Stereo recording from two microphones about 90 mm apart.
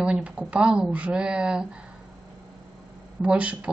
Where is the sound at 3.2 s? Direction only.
15° right (ahead or behind).